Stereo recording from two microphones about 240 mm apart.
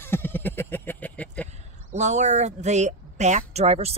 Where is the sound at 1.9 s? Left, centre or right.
Right.